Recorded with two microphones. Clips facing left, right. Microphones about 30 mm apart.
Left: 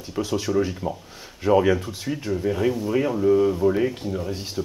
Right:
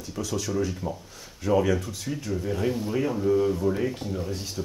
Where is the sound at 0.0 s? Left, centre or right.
Left.